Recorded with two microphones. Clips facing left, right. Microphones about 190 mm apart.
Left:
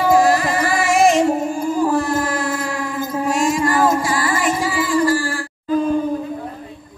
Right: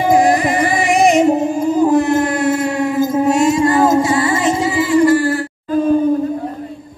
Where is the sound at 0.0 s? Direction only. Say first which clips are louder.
Right 2 dB; 15° right (ahead or behind).